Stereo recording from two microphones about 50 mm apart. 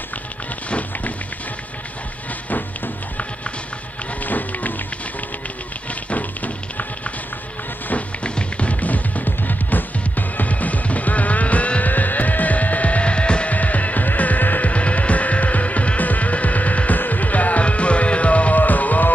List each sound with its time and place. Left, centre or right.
0.7 s music: left
4.2 s run: left
6.0 s music: left
7.9 s music: left